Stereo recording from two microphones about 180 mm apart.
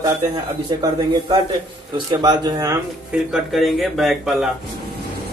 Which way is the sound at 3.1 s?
5° right (ahead or behind).